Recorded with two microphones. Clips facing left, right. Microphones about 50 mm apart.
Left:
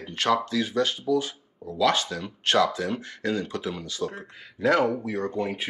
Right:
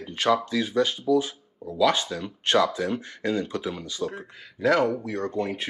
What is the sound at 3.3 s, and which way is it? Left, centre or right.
Speech, right.